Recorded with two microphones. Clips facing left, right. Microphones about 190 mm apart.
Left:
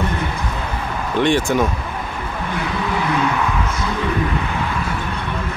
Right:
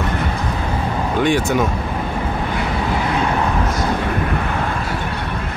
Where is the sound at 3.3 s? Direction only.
35° right (ahead or behind).